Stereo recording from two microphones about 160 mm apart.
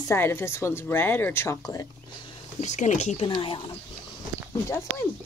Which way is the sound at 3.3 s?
30° left (ahead or behind).